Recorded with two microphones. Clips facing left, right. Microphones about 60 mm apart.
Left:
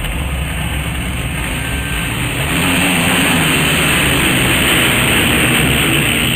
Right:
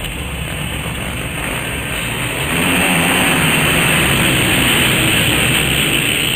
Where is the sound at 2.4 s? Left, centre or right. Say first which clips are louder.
Even; centre.